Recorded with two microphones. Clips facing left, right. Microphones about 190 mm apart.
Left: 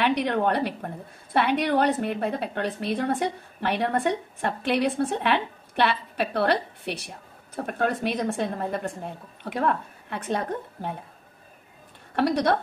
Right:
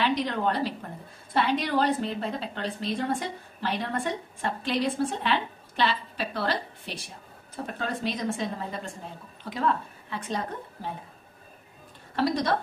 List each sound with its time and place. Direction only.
0.0 s a woman's voice: 60° left (ahead or behind)
12.2 s a woman's voice: 65° left (ahead or behind)